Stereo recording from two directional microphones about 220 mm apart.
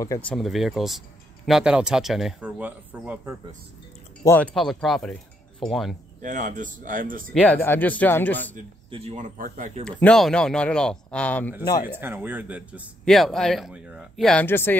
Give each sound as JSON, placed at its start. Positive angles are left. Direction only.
{"t": 0.0, "sound": "speech", "side_deg": 15}
{"t": 0.4, "sound": "speech", "side_deg": 0}
{"t": 4.2, "sound": "speech", "side_deg": 10}
{"t": 6.2, "sound": "speech", "side_deg": -35}
{"t": 7.3, "sound": "speech", "side_deg": 5}
{"t": 8.9, "sound": "speech", "side_deg": -30}
{"t": 9.8, "sound": "speech", "side_deg": 5}
{"t": 12.0, "sound": "speech", "side_deg": -10}